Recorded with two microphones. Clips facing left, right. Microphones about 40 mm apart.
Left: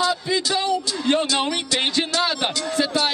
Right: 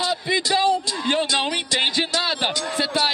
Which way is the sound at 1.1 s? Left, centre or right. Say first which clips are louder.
Even; centre.